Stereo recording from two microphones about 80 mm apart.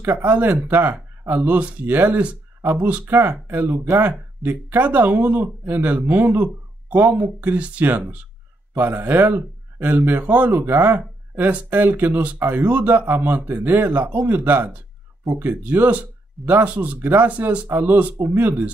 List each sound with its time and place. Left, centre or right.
0.2 s speech: right
17.6 s speech: right